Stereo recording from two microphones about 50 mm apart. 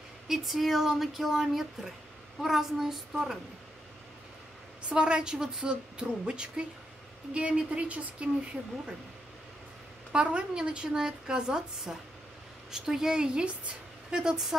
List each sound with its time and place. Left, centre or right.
0.3 s a woman's voice: centre
4.8 s a woman's voice: centre
10.1 s a woman's voice: centre